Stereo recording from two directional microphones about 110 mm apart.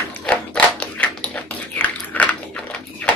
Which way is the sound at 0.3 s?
10° left (ahead or behind).